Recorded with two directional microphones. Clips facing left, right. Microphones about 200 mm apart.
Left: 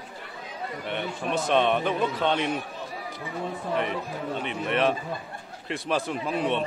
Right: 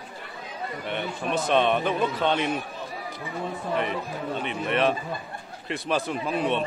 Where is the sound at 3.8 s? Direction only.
Centre (ahead or behind).